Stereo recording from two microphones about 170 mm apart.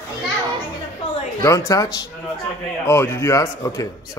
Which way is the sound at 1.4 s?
15° left (ahead or behind).